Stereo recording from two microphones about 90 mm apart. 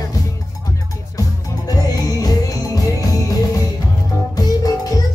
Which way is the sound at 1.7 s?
45° left (ahead or behind).